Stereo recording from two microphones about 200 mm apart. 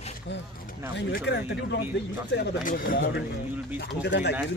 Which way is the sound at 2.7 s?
45° left (ahead or behind).